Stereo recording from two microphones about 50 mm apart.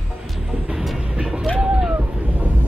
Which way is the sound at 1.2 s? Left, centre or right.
Centre.